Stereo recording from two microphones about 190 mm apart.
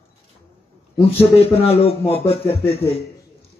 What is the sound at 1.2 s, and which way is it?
Speech, 30° left (ahead or behind).